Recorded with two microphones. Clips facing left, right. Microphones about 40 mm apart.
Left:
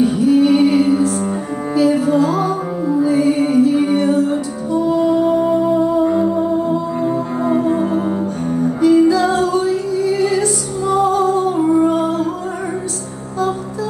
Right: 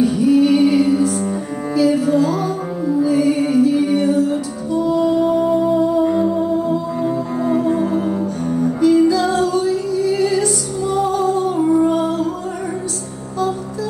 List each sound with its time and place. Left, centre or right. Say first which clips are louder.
0.0 s music: left 1 dB; left
6.1 s music: left 1 dB; centre
7.1 s cello: left 1 dB; left